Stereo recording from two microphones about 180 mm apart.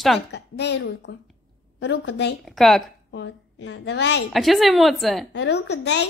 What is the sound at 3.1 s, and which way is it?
A woman's voice, 85° left.